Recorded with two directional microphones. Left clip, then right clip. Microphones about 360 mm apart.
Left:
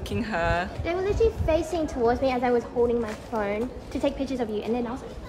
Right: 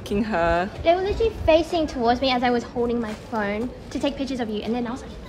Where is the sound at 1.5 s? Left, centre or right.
Centre.